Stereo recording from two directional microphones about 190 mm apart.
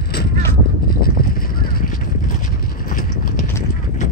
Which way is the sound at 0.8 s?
50° left (ahead or behind).